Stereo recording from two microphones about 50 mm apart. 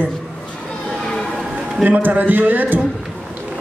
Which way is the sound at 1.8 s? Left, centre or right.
Right.